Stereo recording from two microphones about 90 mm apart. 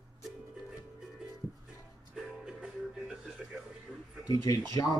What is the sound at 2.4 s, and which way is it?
Music, 10° right (ahead or behind).